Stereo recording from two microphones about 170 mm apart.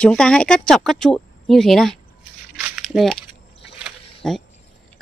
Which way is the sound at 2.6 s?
5° right (ahead or behind).